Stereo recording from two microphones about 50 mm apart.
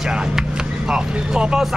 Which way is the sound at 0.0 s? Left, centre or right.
Centre.